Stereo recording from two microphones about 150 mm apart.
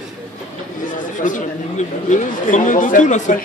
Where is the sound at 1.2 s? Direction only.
55° left (ahead or behind).